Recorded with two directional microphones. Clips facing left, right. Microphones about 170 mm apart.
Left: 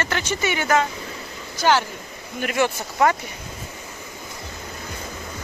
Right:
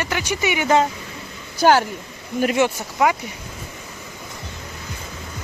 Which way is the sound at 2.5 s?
15° right (ahead or behind).